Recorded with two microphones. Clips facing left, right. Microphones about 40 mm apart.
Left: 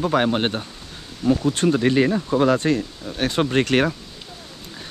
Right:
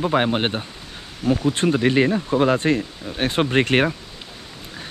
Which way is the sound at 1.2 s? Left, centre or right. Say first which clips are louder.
Left 1 dB; centre.